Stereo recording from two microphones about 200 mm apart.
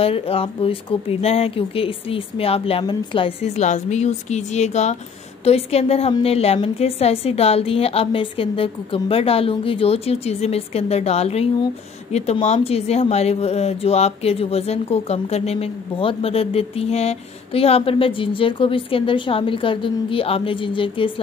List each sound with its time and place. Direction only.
0.0 s a woman's voice: 30° left (ahead or behind)